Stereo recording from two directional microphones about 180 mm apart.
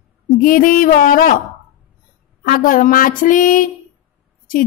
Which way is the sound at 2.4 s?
55° left (ahead or behind).